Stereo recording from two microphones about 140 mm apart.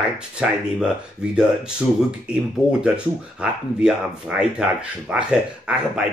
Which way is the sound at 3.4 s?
5° right (ahead or behind).